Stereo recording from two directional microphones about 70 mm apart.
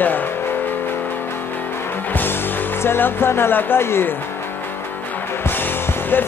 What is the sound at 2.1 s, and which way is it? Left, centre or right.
Speech, left.